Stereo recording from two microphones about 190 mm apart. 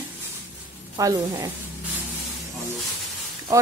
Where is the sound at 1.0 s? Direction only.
15° right (ahead or behind).